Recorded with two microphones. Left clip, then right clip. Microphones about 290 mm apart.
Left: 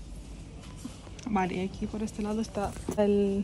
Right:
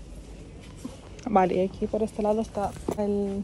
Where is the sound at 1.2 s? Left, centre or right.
Centre.